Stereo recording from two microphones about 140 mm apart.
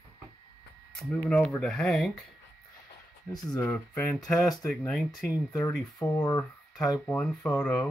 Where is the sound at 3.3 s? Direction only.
30° left (ahead or behind).